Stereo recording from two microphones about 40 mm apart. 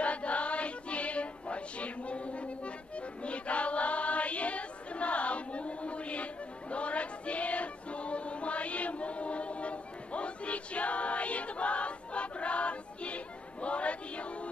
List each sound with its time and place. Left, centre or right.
0.0 s music: left
3.3 s choir: left
6.7 s child singing: left